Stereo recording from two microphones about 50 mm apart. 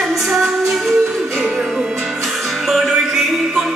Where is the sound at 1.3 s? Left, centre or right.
Centre.